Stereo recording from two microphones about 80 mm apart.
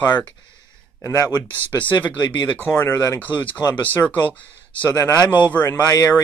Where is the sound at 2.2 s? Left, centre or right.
Left.